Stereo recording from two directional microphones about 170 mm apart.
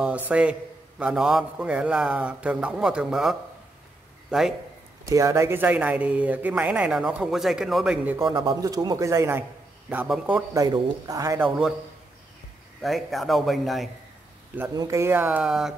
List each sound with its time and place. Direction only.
0.0 s a man's voice: 10° right (ahead or behind)
5.0 s speech: 20° right (ahead or behind)
8.3 s a man's voice: 20° right (ahead or behind)
10.0 s a man's voice: 5° right (ahead or behind)
10.5 s a man's voice: 20° right (ahead or behind)
12.8 s a man's voice: centre (ahead or behind)
14.8 s speech: 15° right (ahead or behind)